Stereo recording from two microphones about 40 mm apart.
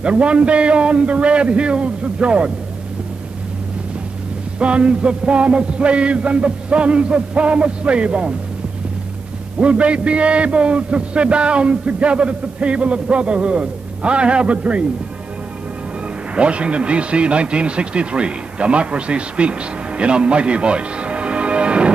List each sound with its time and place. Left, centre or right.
0.0 s a man's voice: right
4.6 s a man's voice: right
9.6 s a man's voice: right
16.3 s speech: right